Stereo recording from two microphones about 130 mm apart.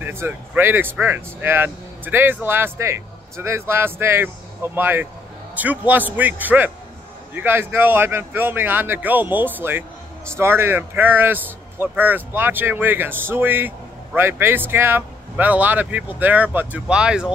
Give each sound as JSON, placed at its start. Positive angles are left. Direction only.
{"t": 0.0, "sound": "speech", "side_deg": -20}